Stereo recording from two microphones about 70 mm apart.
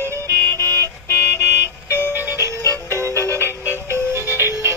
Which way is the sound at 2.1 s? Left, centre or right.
Right.